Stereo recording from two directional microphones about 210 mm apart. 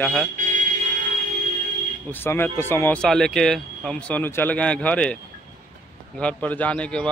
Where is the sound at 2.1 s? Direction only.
10° left (ahead or behind).